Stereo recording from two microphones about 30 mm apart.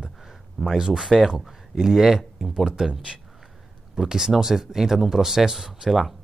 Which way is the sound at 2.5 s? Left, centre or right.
Right.